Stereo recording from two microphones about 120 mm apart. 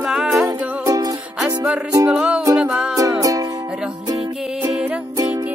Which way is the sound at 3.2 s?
30° right (ahead or behind).